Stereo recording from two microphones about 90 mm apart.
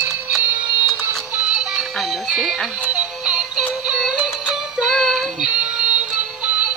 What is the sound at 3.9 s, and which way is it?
Synthetic singing, 10° right (ahead or behind).